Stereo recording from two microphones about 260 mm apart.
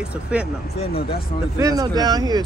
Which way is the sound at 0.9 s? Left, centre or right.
Left.